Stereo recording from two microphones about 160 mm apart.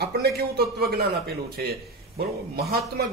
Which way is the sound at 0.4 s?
80° right.